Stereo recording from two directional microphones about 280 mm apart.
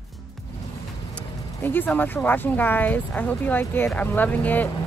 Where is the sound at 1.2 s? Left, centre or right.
Centre.